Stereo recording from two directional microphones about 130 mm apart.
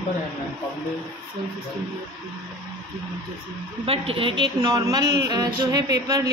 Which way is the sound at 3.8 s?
50° right (ahead or behind).